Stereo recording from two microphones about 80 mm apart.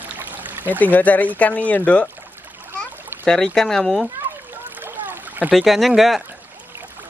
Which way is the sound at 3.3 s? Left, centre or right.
Centre.